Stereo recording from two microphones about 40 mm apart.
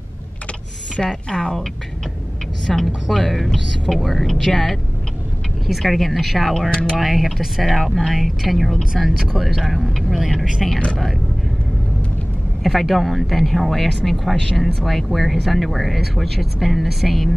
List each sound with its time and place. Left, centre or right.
0.9 s a woman's voice: centre
6.7 s speech: left
7.0 s a woman's voice: centre
12.6 s speech: centre
14.3 s speech: centre
14.6 s speech: centre